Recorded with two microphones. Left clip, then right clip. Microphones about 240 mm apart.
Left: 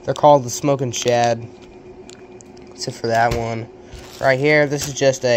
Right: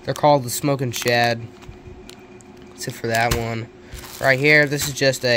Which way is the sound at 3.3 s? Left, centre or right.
Right.